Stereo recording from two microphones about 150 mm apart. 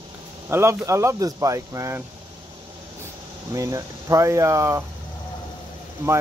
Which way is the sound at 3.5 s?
20° right (ahead or behind).